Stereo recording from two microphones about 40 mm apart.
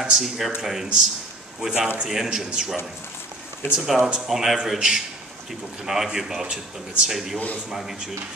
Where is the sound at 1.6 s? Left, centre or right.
Centre.